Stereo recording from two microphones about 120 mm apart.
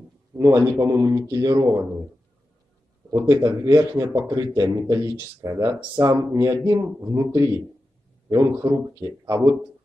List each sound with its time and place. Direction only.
0.4 s speech: 25° right (ahead or behind)
3.1 s speech: 30° right (ahead or behind)
8.5 s speech: 20° right (ahead or behind)